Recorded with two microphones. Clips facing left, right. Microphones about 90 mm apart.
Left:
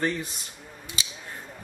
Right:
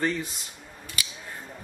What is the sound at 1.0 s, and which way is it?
Scissors, 25° left (ahead or behind).